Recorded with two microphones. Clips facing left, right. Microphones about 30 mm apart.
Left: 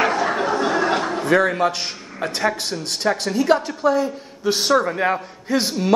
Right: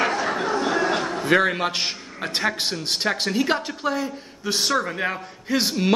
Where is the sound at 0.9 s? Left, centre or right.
Centre.